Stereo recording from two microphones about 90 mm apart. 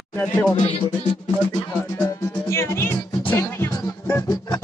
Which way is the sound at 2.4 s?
30° left (ahead or behind).